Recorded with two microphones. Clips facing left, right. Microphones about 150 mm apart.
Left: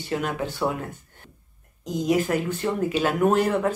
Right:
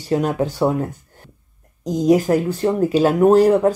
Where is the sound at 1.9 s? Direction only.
35° right (ahead or behind).